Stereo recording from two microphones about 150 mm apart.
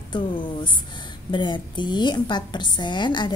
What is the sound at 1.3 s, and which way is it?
A woman's voice, 30° left (ahead or behind).